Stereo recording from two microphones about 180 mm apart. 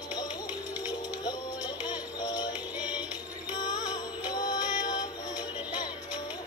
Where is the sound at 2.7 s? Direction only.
5° right (ahead or behind).